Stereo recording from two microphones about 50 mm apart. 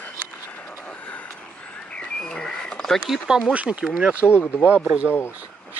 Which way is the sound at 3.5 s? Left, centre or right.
Right.